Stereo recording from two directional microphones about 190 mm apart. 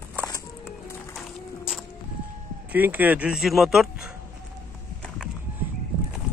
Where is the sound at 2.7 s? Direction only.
10° right (ahead or behind).